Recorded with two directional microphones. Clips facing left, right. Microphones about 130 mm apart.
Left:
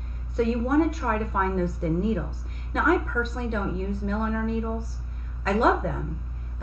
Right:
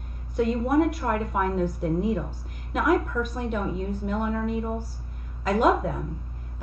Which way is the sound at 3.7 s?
Centre (ahead or behind).